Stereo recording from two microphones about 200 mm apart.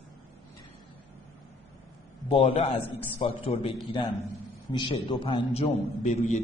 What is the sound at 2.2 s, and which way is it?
A man's voice, 30° left (ahead or behind).